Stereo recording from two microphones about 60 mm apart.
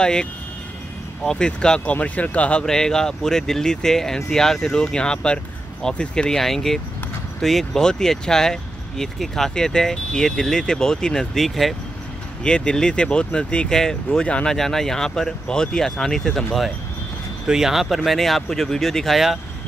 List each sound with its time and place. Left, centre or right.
0.0 s speech: centre
2.0 s speech: left
2.6 s speech: centre
12.4 s speech: centre
17.5 s speech: centre